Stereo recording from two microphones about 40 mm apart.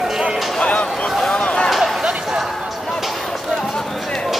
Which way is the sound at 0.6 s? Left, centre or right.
Left.